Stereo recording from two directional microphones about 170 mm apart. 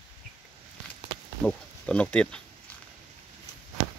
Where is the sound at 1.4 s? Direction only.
5° left (ahead or behind).